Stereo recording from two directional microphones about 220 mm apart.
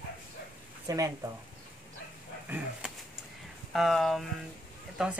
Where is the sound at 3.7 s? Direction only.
Centre (ahead or behind).